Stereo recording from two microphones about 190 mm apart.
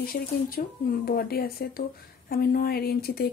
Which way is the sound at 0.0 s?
50° left (ahead or behind).